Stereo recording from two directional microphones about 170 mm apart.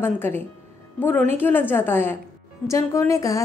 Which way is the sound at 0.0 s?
10° left (ahead or behind).